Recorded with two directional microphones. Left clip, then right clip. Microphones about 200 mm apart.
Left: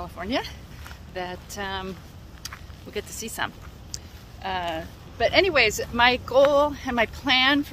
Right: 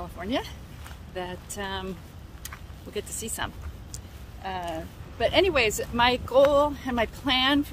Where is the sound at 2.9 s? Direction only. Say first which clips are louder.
Left 2 dB; 15° right (ahead or behind).